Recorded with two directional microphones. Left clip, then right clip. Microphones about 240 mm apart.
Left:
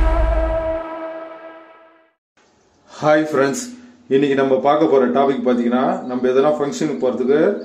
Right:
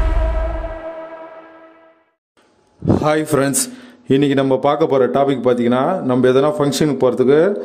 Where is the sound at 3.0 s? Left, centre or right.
Right.